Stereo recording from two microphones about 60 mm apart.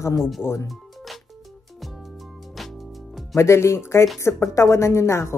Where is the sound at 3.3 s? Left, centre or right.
Left.